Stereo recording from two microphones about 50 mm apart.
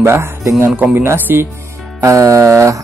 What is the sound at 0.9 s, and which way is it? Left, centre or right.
Speech, right.